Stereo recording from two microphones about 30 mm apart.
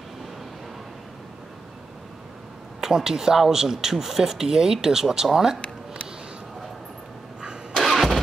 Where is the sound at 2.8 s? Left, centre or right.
Centre.